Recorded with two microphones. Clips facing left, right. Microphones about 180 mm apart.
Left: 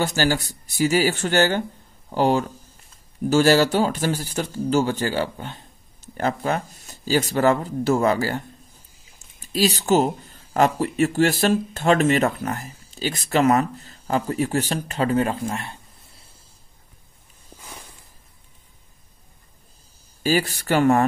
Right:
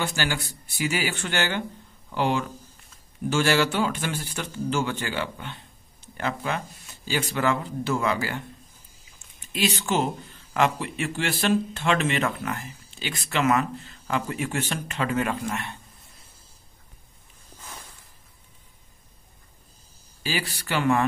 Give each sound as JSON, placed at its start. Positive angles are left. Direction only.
{"t": 0.0, "sound": "speech", "side_deg": 40}
{"t": 20.2, "sound": "speech", "side_deg": 45}